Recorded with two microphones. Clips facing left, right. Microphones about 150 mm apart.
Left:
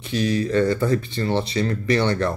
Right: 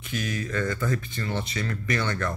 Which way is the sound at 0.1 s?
30° left (ahead or behind).